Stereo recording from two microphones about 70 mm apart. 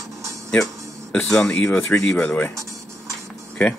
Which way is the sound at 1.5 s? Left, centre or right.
Centre.